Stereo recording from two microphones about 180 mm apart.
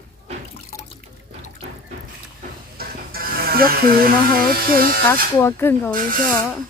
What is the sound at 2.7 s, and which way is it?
Speech, 55° right (ahead or behind).